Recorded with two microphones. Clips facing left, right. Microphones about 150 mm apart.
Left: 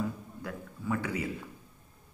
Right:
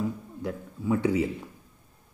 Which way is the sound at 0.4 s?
20° right (ahead or behind).